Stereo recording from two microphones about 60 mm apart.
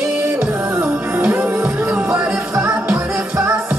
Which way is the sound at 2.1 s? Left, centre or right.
Right.